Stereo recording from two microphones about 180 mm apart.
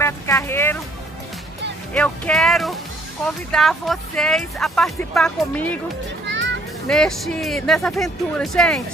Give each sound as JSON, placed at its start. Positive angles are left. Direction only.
{"t": 0.0, "sound": "speech", "side_deg": 15}
{"t": 2.0, "sound": "speech", "side_deg": 5}
{"t": 6.2, "sound": "music", "side_deg": -90}
{"t": 6.9, "sound": "speech", "side_deg": 0}